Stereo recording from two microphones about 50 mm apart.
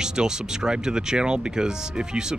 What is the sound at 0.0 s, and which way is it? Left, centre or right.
Speech, centre.